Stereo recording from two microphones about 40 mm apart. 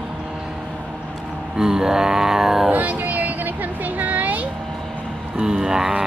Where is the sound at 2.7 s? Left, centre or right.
Right.